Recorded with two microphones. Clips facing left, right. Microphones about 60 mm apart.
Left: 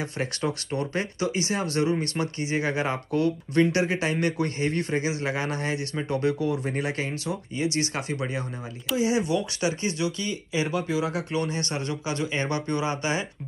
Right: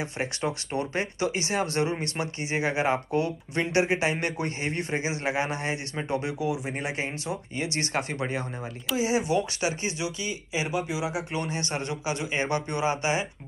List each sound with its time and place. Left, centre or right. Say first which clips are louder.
0.0 s speech: left 1 dB; right
7.5 s speech: left 2 dB; right